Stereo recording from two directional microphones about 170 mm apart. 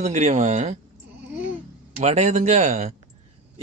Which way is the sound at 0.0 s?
40° right (ahead or behind).